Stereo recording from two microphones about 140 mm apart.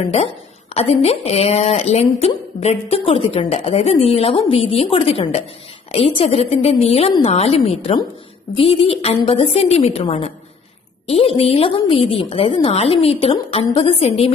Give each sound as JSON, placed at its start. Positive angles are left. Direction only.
{"t": 0.7, "sound": "speech", "side_deg": 45}